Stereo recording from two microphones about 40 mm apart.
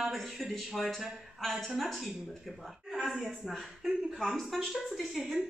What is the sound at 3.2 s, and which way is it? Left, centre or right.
A woman's voice, centre.